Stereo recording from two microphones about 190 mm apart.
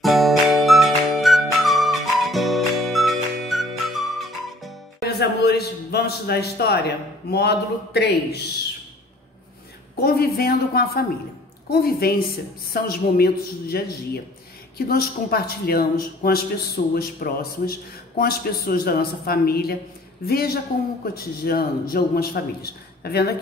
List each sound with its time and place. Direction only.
0.0 s music: centre (ahead or behind)
5.0 s a man's voice: 55° left (ahead or behind)
9.9 s a woman's voice: 55° left (ahead or behind)